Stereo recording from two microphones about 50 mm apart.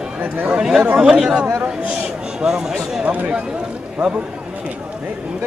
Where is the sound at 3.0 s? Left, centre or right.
Right.